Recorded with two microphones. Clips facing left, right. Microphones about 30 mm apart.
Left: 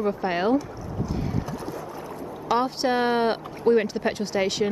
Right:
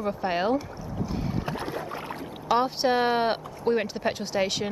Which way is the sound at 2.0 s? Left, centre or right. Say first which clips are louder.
Left 1 dB; right.